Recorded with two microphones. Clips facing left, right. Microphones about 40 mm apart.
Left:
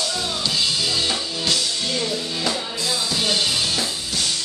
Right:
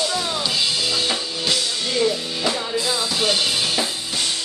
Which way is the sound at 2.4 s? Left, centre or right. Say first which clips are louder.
Right 5 dB; centre.